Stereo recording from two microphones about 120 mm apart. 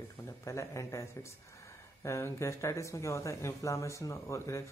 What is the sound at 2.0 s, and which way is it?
Speech, 25° left (ahead or behind).